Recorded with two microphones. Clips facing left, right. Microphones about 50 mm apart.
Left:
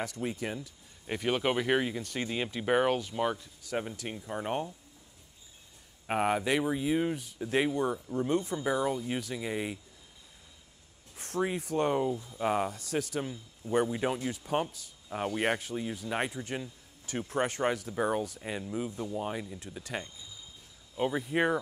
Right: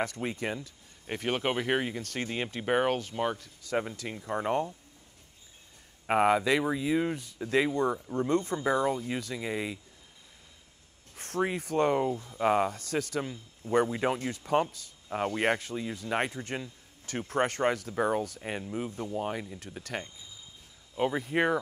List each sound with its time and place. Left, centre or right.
0.0 s speech: right
1.0 s speech: right
2.0 s speech: right
3.3 s speech: right
6.0 s speech: right
11.1 s speech: right
12.2 s speech: right
12.4 s speech: right
19.1 s speech: right